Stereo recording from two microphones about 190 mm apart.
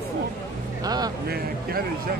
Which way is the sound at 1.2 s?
55° right (ahead or behind).